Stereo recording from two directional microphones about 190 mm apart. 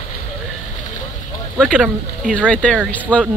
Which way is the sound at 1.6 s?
5° right (ahead or behind).